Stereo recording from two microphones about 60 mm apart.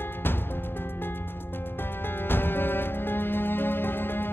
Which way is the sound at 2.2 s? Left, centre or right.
Left.